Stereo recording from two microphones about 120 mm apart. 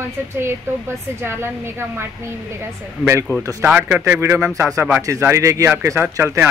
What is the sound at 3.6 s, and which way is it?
A man's voice, 15° right (ahead or behind).